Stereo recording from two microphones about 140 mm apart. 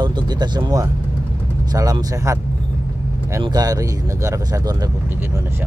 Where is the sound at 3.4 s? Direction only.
30° right (ahead or behind).